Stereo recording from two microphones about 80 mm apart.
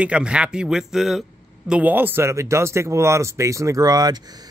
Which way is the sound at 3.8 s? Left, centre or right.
Right.